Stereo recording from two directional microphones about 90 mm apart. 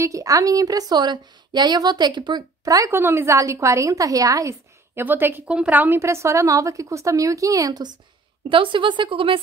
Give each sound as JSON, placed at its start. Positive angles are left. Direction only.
{"t": 0.0, "sound": "a woman's voice", "side_deg": -40}
{"t": 2.6, "sound": "speech", "side_deg": -40}
{"t": 2.9, "sound": "a woman's voice", "side_deg": -25}
{"t": 4.9, "sound": "a woman's voice", "side_deg": -25}
{"t": 8.5, "sound": "speech", "side_deg": -70}